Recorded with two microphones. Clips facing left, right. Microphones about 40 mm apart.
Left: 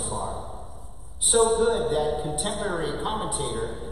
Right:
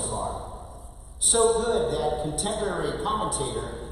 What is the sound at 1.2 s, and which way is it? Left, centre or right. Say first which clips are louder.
Speech: left 4 dB; left.